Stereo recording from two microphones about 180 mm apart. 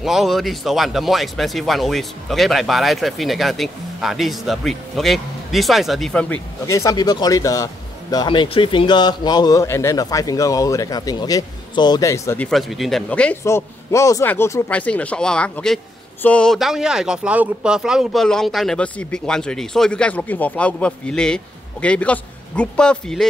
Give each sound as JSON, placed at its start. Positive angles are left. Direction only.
{"t": 0.0, "sound": "speech", "side_deg": 0}
{"t": 12.4, "sound": "speech", "side_deg": 0}